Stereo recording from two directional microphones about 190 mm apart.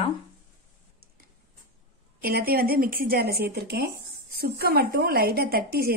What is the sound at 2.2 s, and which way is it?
Speech, 50° right (ahead or behind).